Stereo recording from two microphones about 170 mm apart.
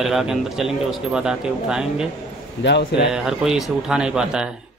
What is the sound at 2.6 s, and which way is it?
Speech, 90° left.